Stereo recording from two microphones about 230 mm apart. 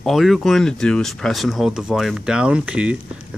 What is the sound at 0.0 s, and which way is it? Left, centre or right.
Speech, centre.